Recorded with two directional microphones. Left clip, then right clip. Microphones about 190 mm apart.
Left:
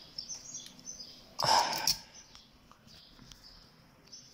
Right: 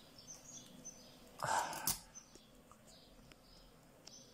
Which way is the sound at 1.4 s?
15° left (ahead or behind).